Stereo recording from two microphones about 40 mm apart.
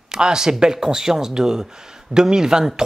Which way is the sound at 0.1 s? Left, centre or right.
Centre.